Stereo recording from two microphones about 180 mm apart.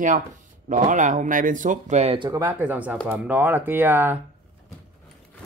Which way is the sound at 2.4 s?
10° right (ahead or behind).